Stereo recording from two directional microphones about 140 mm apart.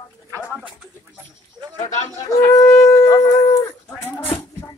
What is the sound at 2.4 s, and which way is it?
Shofar, 20° left (ahead or behind).